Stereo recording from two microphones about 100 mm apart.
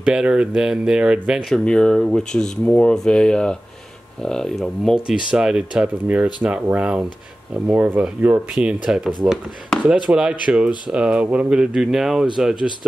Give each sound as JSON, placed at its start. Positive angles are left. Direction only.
{"t": 0.0, "sound": "speech", "side_deg": -10}
{"t": 1.5, "sound": "speech", "side_deg": 10}